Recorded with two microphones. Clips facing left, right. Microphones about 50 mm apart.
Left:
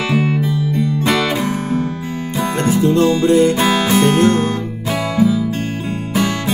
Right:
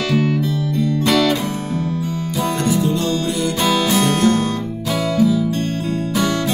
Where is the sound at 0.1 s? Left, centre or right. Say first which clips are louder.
Even; centre.